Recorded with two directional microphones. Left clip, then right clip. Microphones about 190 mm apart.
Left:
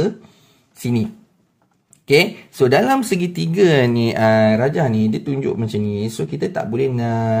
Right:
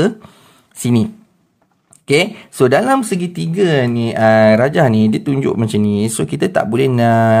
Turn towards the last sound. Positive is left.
turn(degrees=-30)  # may be behind; listen again after turning